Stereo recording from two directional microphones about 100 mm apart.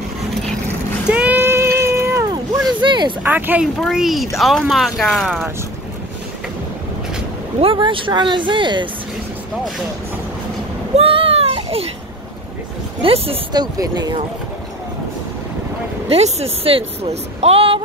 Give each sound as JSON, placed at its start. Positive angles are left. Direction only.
{"t": 1.0, "sound": "vehicle", "side_deg": -15}
{"t": 1.4, "sound": "a sound", "side_deg": -25}
{"t": 2.8, "sound": "a sound", "side_deg": -50}
{"t": 3.3, "sound": "speech", "side_deg": -20}
{"t": 3.7, "sound": "speech", "side_deg": 0}
{"t": 7.6, "sound": "speech", "side_deg": -55}
{"t": 11.0, "sound": "a sound", "side_deg": -70}
{"t": 13.0, "sound": "speech", "side_deg": -75}
{"t": 13.5, "sound": "speech", "side_deg": -45}
{"t": 16.1, "sound": "speech", "side_deg": -90}